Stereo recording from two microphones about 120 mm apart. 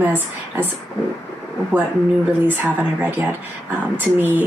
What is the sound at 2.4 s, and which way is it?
A woman's voice, 15° right (ahead or behind).